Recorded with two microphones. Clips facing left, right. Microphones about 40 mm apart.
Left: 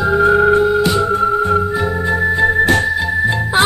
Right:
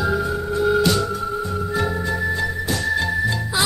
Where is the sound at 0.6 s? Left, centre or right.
Centre.